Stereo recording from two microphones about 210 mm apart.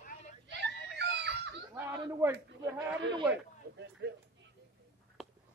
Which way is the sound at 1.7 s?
15° right (ahead or behind).